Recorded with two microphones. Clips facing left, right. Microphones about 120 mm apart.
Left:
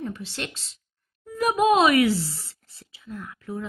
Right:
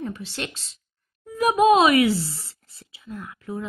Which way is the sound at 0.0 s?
15° right (ahead or behind).